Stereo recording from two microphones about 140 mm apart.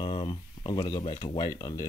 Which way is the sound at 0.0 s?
40° left (ahead or behind).